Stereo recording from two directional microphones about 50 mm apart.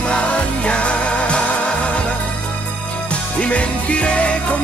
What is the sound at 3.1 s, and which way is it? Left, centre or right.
Music, left.